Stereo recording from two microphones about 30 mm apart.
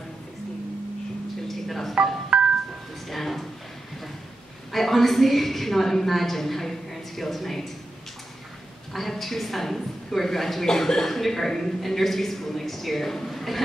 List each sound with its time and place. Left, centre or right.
1.5 s telephone: centre
2.3 s music: right
3.1 s a sound: centre
4.7 s a woman's voice: centre
8.9 s a woman's voice: centre
10.7 s a woman's voice: centre